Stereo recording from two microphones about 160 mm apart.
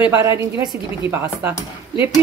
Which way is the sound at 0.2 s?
15° right (ahead or behind).